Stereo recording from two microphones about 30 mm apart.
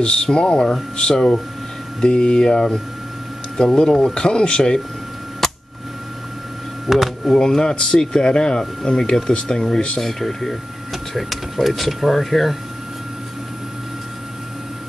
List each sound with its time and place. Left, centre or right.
0.0 s speech: left
5.4 s a sound: centre
6.9 s speech: centre
7.2 s speech: centre
9.9 s speech: centre
10.9 s speech: centre